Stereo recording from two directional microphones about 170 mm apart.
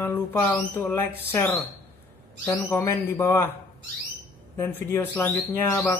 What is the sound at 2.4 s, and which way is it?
Speech, 15° left (ahead or behind).